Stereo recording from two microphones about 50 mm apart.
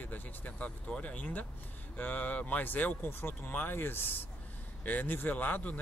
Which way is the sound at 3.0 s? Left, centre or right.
Left.